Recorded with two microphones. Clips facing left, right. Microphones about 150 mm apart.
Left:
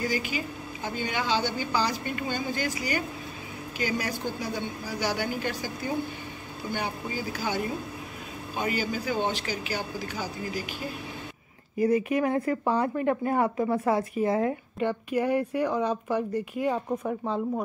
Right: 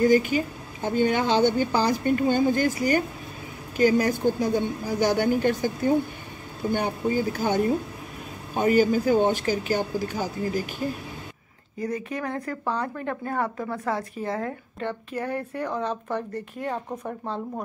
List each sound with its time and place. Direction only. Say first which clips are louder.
0.0 s a woman's voice: right 10 dB; 50° right (ahead or behind)
11.9 s speech: left 5 dB; 15° left (ahead or behind)